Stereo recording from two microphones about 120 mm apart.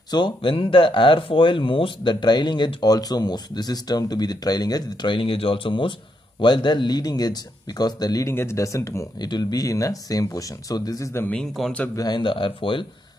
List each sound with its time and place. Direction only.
0.1 s speech: 45° left (ahead or behind)
11.1 s a man's voice: 10° left (ahead or behind)
11.5 s speech: centre (ahead or behind)
11.9 s speech: 35° left (ahead or behind)